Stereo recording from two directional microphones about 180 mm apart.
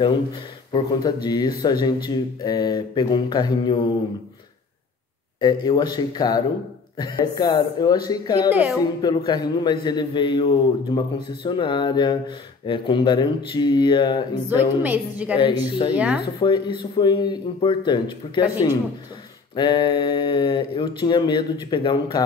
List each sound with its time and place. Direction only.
1.0 s speech: 20° left (ahead or behind)
5.4 s speech: 20° left (ahead or behind)
8.5 s a woman's voice: 10° right (ahead or behind)
8.7 s speech: 20° left (ahead or behind)
14.5 s a woman's voice: 10° right (ahead or behind)
16.3 s speech: 25° left (ahead or behind)